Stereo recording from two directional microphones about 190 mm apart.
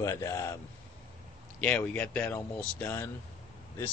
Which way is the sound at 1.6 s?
5° left (ahead or behind).